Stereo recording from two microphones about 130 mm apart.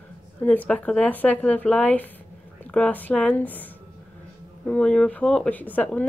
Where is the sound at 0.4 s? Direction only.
10° left (ahead or behind).